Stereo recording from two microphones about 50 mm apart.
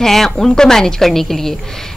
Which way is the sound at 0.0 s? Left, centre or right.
Centre.